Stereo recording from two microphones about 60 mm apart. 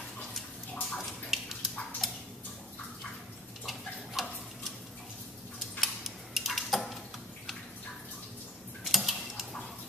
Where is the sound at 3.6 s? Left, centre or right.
Centre.